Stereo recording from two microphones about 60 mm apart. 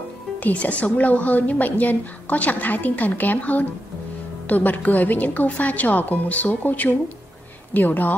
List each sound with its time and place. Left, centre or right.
0.4 s a woman's voice: left